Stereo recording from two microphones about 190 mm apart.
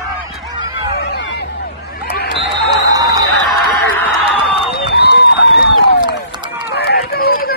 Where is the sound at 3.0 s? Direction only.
20° right (ahead or behind).